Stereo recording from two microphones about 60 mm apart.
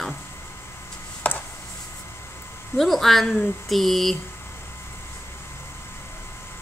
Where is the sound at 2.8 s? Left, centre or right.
Centre.